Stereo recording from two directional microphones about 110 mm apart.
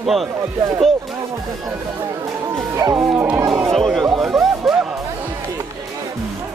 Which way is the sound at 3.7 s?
Centre (ahead or behind).